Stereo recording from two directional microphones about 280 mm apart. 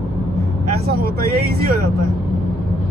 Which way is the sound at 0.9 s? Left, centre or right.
Right.